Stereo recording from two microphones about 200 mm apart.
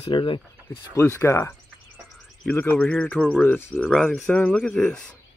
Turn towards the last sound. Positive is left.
turn(degrees=5)  # may be behind; listen again after turning